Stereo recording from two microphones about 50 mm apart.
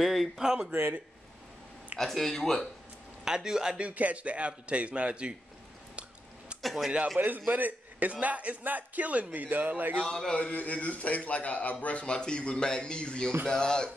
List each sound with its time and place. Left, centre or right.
0.0 s speech: centre
0.7 s speech: right
2.0 s speech: centre
3.3 s speech: centre
3.7 s a man's voice: right
6.6 s speech: centre
7.2 s a man's voice: right
10.0 s speech: centre
10.3 s speech: left